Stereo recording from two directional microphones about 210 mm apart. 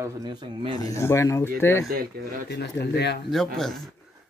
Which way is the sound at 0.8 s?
15° left (ahead or behind).